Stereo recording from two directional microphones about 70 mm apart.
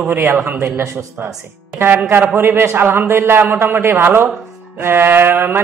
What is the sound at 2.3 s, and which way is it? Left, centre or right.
A man's voice, right.